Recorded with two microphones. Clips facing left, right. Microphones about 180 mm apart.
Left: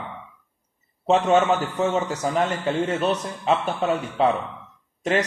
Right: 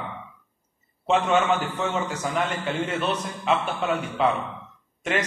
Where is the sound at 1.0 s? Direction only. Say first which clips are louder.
Left 3 dB; 40° left (ahead or behind).